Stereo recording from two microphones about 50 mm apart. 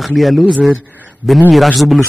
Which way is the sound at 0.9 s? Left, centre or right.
Right.